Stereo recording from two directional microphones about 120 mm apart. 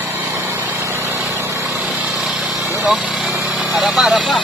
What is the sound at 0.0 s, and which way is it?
Vehicle, 20° right (ahead or behind).